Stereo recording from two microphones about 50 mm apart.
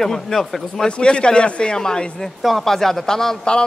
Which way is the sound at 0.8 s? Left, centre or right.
Centre.